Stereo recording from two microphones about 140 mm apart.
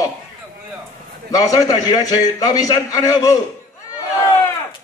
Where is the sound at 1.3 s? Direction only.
25° left (ahead or behind).